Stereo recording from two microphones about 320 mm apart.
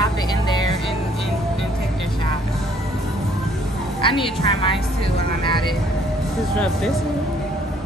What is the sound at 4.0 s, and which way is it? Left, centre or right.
Speech, centre.